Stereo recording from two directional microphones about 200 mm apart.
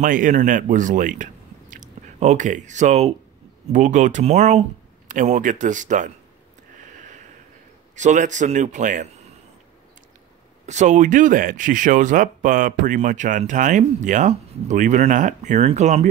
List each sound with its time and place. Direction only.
0.0 s speech: 40° right (ahead or behind)
7.9 s speech: 35° right (ahead or behind)
10.7 s speech: 35° right (ahead or behind)